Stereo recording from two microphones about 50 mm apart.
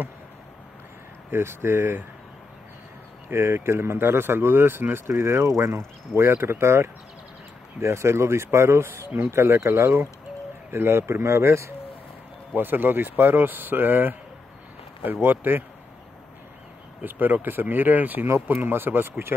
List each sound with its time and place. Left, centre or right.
1.3 s speech: right
3.3 s speech: right
12.5 s speech: right
15.2 s speech: right
17.0 s speech: right
18.2 s speech: right
18.6 s speech: right